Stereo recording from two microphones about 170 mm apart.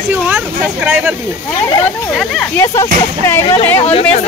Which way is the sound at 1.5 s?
25° left (ahead or behind).